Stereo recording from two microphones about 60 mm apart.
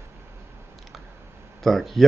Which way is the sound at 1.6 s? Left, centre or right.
Centre.